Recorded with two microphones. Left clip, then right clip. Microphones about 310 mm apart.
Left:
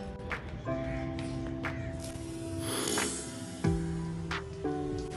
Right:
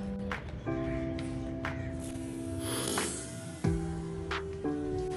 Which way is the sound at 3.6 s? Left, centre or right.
Centre.